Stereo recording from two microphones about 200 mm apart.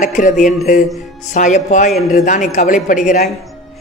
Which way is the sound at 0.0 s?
40° left (ahead or behind).